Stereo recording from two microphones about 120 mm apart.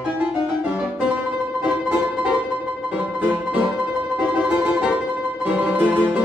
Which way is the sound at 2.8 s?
10° right (ahead or behind).